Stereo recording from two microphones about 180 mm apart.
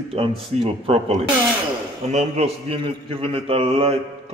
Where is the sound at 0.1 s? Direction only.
35° right (ahead or behind).